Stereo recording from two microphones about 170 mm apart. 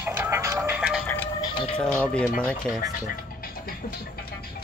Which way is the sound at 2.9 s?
60° left (ahead or behind).